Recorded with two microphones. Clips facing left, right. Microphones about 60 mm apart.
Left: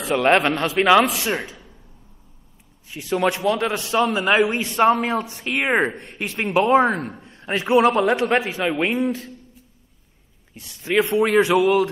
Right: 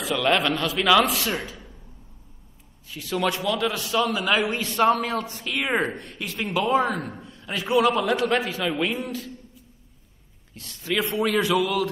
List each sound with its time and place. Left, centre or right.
0.0 s a woman's voice: left
2.9 s a man's voice: left
10.5 s speech: centre
10.9 s a woman's voice: left